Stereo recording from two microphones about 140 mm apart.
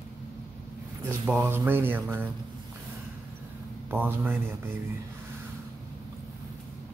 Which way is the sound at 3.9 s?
15° right (ahead or behind).